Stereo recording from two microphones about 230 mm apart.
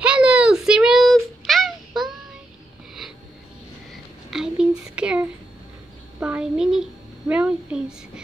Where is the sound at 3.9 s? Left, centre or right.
Centre.